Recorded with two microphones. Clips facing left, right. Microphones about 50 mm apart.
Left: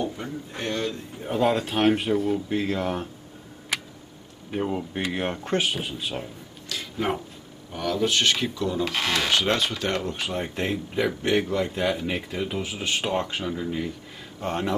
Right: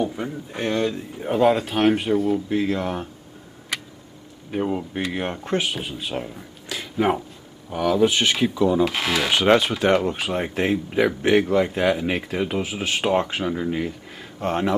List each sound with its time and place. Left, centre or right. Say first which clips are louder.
0.0 s speech: right 4 dB; centre
4.5 s speech: right 3 dB; centre
6.2 s a sound: right 3 dB; centre
7.7 s speech: right 5 dB; centre
8.8 s speech: right 3 dB; centre
9.3 s speech: right 6 dB; centre
10.1 s speech: right 4 dB; centre
13.5 s speech: right 4 dB; right
14.4 s speech: right 5 dB; centre